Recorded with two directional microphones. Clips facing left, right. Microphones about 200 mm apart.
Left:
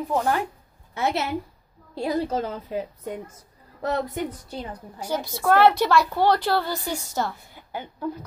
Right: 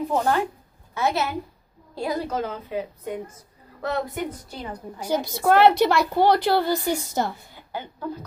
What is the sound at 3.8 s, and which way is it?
Speech, 40° left (ahead or behind).